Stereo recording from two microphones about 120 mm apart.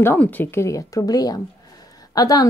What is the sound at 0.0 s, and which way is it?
A woman's voice, 15° left (ahead or behind).